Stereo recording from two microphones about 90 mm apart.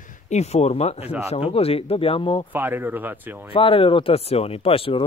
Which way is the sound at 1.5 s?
90° left.